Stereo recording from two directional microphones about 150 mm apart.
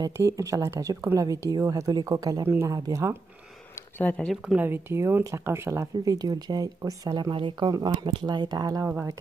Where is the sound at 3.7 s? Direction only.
10° left (ahead or behind).